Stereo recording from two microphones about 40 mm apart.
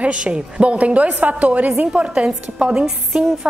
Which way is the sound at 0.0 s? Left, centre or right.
Right.